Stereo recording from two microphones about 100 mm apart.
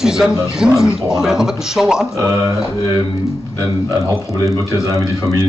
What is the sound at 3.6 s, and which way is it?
A man's voice, 30° right (ahead or behind).